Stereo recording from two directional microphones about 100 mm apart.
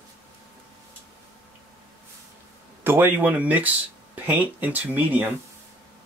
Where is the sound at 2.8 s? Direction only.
20° right (ahead or behind).